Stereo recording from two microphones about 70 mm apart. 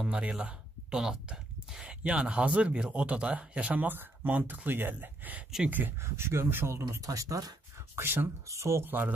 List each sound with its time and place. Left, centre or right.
0.1 s speech: centre
6.0 s speech: right
7.0 s speech: right
7.9 s speech: right
8.5 s speech: right